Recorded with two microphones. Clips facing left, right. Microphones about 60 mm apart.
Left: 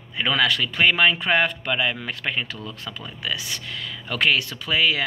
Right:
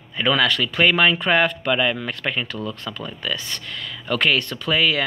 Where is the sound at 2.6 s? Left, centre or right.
Right.